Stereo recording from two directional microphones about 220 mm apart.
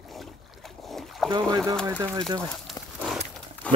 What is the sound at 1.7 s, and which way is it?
Pigeon, 5° left (ahead or behind).